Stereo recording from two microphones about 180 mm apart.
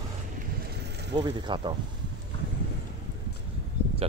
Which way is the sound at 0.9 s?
70° right (ahead or behind).